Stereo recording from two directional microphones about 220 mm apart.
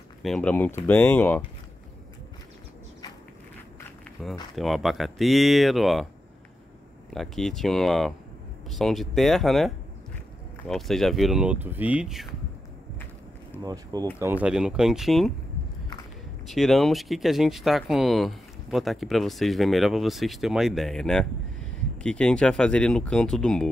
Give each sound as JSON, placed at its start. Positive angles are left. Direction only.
{"t": 0.2, "sound": "speech", "side_deg": 5}
{"t": 4.2, "sound": "speech", "side_deg": 0}
{"t": 7.1, "sound": "speech", "side_deg": 0}
{"t": 10.7, "sound": "speech", "side_deg": 0}
{"t": 13.6, "sound": "speech", "side_deg": -15}
{"t": 14.2, "sound": "speech", "side_deg": -5}
{"t": 16.4, "sound": "speech", "side_deg": 0}